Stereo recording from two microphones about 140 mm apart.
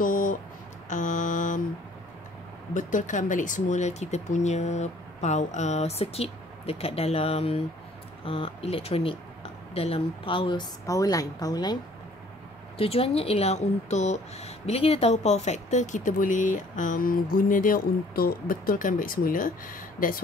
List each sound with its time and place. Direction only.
0.0 s music: 75° left (ahead or behind)
0.8 s mantra: 65° left (ahead or behind)
2.7 s speech: 65° left (ahead or behind); by 11.8 s 30° left (ahead or behind)
12.7 s speech: 45° left (ahead or behind); by 20.2 s 80° left